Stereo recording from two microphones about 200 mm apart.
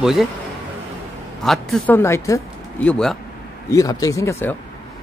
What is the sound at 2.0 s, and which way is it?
Speech, 15° left (ahead or behind).